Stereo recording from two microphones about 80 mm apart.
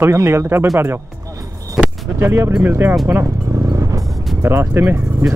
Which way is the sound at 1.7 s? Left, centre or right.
Right.